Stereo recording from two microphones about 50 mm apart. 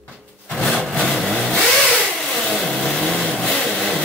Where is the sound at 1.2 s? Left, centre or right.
Centre.